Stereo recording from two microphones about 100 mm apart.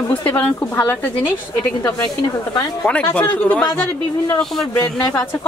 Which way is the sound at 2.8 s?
10° left (ahead or behind).